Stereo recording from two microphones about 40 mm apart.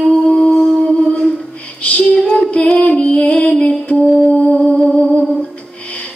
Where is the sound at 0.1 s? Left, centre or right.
Centre.